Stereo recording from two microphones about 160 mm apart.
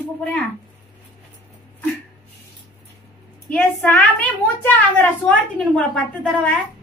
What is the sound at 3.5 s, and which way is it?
A woman's voice, 10° left (ahead or behind).